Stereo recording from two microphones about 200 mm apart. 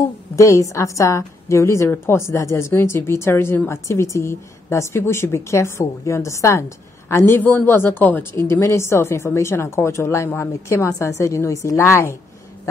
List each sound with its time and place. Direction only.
0.4 s a woman's voice: 15° left (ahead or behind)